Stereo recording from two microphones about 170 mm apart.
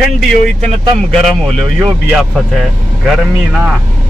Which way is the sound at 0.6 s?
35° right (ahead or behind).